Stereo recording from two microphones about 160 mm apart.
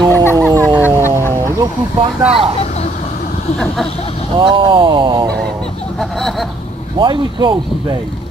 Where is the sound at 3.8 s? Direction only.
40° left (ahead or behind).